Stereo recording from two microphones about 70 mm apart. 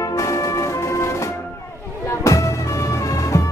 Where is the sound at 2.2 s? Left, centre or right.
Left.